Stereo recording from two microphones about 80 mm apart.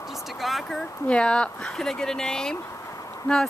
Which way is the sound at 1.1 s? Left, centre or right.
Centre.